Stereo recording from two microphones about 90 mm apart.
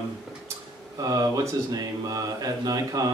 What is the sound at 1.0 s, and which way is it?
Speech, 40° right (ahead or behind).